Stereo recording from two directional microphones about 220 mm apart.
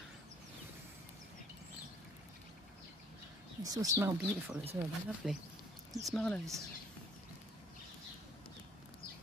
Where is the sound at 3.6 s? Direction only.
15° right (ahead or behind); by 6.5 s 5° left (ahead or behind).